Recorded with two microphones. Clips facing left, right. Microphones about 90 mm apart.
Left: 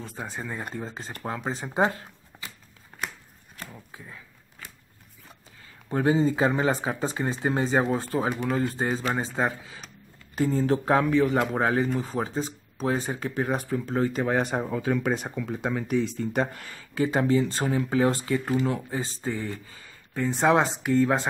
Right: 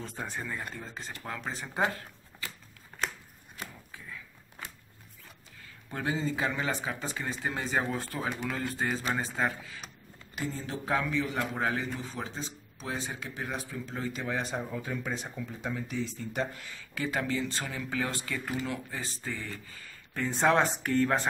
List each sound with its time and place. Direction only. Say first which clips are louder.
0.0 s speech: left 2 dB; 5° left (ahead or behind)
0.5 s speech: left 5 dB; 30° left (ahead or behind)
5.9 s speech: left 10 dB; 35° left (ahead or behind)
10.5 s speech: left 9 dB; 50° left (ahead or behind)
16.9 s speech: left 9 dB; 30° left (ahead or behind); by 21.3 s 15° left (ahead or behind)